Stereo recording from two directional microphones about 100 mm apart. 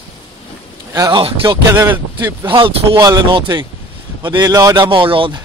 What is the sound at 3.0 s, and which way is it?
Speech, 45° right (ahead or behind).